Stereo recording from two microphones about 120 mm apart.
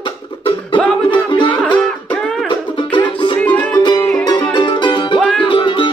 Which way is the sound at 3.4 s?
10° left (ahead or behind).